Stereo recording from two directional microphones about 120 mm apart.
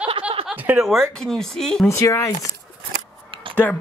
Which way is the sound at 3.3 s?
45° right (ahead or behind).